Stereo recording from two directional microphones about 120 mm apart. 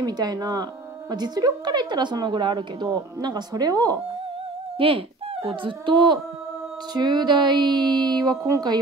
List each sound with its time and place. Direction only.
0.0 s a woman's voice: 35° right (ahead or behind)
4.7 s a sound: 50° right (ahead or behind)
5.6 s a woman's voice: 45° right (ahead or behind)